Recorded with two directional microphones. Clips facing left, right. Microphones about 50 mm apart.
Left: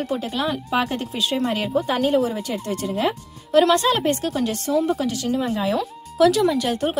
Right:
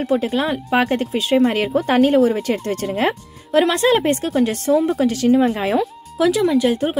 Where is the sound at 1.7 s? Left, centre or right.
Right.